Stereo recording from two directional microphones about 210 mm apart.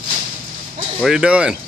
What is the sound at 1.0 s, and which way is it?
Speech, 5° right (ahead or behind).